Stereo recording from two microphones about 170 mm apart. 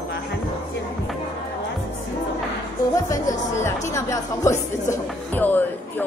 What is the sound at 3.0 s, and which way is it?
Speech, 20° left (ahead or behind).